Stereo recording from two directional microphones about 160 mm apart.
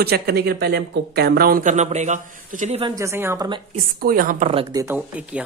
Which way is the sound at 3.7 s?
60° right (ahead or behind).